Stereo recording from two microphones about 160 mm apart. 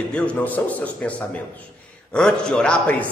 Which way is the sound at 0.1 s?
10° left (ahead or behind).